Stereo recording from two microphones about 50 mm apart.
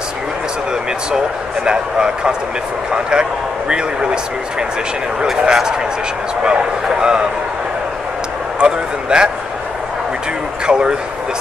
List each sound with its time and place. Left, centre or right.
1.1 s speech: centre
8.5 s a man's voice: centre
10.7 s a man's voice: centre